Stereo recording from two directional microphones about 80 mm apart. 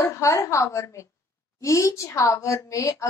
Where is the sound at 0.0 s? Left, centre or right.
Left.